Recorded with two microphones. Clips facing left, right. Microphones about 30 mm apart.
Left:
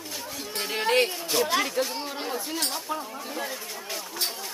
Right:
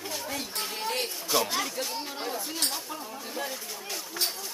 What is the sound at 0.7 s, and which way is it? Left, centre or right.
Speech, left.